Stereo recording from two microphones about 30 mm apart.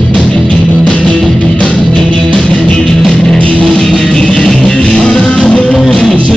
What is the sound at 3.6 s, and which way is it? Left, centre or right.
Music, centre.